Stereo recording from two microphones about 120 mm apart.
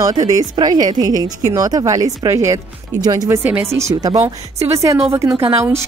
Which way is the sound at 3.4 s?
15° right (ahead or behind).